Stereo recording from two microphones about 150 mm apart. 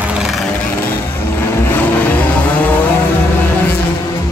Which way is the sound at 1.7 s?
10° left (ahead or behind).